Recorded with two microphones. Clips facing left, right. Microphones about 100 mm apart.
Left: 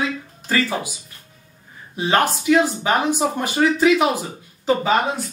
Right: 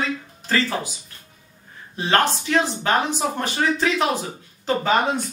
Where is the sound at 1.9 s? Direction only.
10° left (ahead or behind).